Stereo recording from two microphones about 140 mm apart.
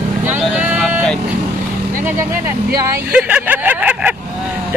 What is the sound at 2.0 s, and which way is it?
A man's voice, 15° right (ahead or behind).